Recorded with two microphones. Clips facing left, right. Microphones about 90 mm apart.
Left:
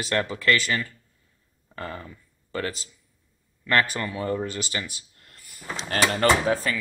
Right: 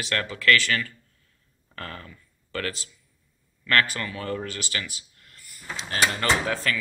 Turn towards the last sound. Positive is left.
turn(degrees=20)  # may be behind; listen again after turning